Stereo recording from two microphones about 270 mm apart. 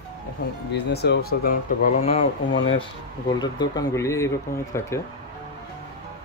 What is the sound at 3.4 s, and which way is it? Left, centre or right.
Speech, centre.